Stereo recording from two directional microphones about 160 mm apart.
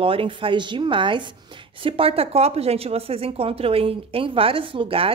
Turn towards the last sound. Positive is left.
turn(degrees=-35)  # may be behind; listen again after turning